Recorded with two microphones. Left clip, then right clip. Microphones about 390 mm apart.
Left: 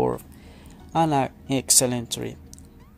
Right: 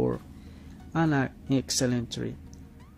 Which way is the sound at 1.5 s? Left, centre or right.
Centre.